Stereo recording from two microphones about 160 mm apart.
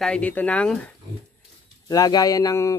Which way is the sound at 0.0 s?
5° left (ahead or behind).